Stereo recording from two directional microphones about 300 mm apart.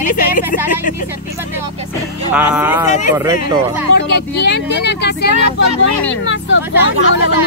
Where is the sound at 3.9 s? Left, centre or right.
Left.